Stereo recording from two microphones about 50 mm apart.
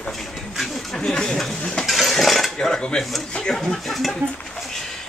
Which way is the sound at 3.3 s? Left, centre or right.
Centre.